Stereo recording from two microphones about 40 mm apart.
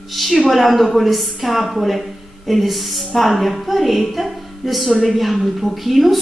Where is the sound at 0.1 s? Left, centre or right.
Centre.